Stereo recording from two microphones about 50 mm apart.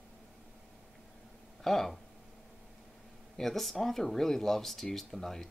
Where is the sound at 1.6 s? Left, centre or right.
Centre.